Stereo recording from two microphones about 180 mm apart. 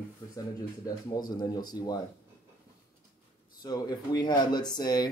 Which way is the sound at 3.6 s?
20° left (ahead or behind).